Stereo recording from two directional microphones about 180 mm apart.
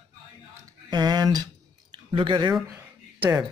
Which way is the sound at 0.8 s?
20° right (ahead or behind).